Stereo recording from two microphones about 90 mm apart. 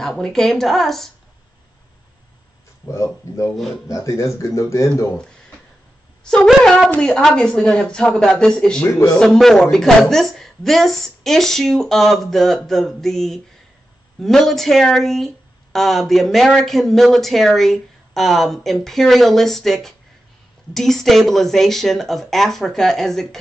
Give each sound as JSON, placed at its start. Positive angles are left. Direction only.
{"t": 0.0, "sound": "speech", "side_deg": 5}
{"t": 3.5, "sound": "speech", "side_deg": 5}
{"t": 3.9, "sound": "speech", "side_deg": 35}
{"t": 6.2, "sound": "speech", "side_deg": 10}